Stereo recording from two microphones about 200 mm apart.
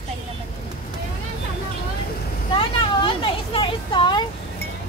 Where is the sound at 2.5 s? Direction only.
25° left (ahead or behind).